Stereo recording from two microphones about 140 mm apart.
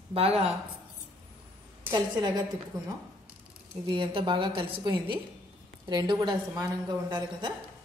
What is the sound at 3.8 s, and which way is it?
A woman's voice, 35° right (ahead or behind).